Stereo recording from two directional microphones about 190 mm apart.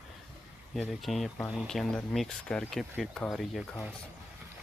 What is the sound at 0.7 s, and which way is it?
Speech, centre (ahead or behind).